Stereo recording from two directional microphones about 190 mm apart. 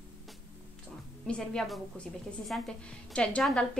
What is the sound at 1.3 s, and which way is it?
A woman's voice, 5° left (ahead or behind).